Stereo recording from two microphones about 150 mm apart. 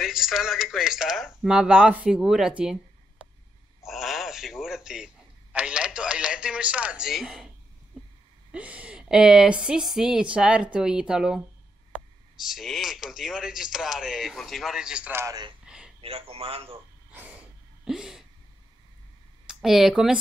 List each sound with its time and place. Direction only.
0.0 s a woman's voice: 5° right (ahead or behind)
3.8 s a man's voice: centre (ahead or behind)
15.6 s a sound: 5° right (ahead or behind)
16.0 s a man's voice: 40° right (ahead or behind)
17.8 s a woman's voice: 5° right (ahead or behind)
19.4 s speech: centre (ahead or behind)